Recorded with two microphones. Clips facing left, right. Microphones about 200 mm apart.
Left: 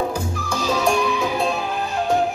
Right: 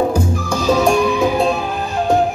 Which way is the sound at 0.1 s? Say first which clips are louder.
Right 7 dB; 45° right (ahead or behind).